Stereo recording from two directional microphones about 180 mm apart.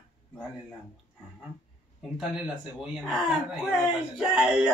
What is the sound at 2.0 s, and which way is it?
Speech, centre (ahead or behind).